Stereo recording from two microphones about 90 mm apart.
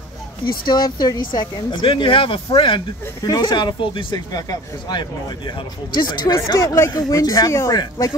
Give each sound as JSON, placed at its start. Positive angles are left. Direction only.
{"t": 0.5, "sound": "speech", "side_deg": 55}
{"t": 3.3, "sound": "speech", "side_deg": 55}
{"t": 4.3, "sound": "speech", "side_deg": 50}
{"t": 6.4, "sound": "speech", "side_deg": 35}